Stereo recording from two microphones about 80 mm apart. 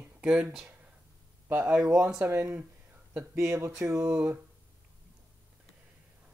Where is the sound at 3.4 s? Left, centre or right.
Right.